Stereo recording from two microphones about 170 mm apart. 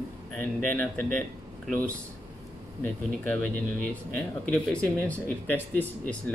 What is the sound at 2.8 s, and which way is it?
Speech, 5° left (ahead or behind).